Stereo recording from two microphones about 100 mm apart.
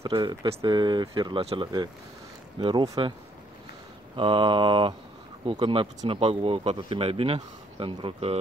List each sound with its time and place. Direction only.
0.1 s speech: 45° right (ahead or behind)
1.1 s mantra: 55° right (ahead or behind)
1.6 s speech: 45° right (ahead or behind)
4.2 s mantra: 60° right (ahead or behind)
5.5 s speech: 60° right (ahead or behind)